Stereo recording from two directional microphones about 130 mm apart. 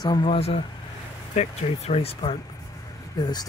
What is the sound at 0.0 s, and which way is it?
Speech, 35° left (ahead or behind).